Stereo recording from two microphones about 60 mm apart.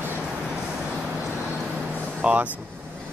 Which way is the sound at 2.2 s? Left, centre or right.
Right.